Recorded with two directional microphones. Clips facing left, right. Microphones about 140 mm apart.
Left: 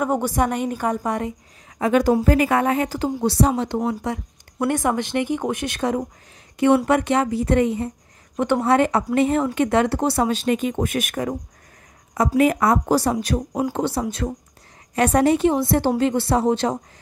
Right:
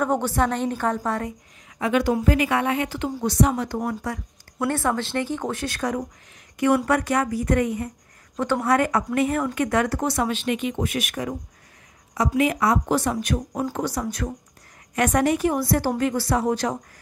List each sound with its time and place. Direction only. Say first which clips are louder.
0.0 s speech: left 1 dB; 10° left (ahead or behind)
1.8 s a woman's voice: left 4 dB; 40° left (ahead or behind)
12.9 s a woman's voice: left 3 dB; 35° left (ahead or behind)
13.5 s speech: left 4 dB; 20° left (ahead or behind)